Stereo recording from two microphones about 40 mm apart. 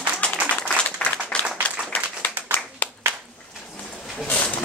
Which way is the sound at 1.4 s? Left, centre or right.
Left.